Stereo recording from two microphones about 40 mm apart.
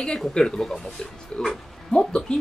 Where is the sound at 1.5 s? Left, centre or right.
Centre.